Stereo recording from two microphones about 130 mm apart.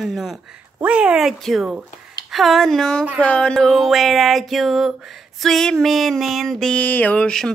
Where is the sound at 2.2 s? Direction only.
Centre (ahead or behind).